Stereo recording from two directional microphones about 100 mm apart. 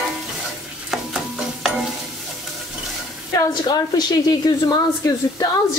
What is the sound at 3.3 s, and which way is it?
A woman's voice, 45° left (ahead or behind).